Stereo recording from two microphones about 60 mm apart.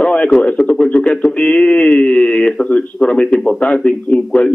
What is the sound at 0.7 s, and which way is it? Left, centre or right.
A man's voice, centre.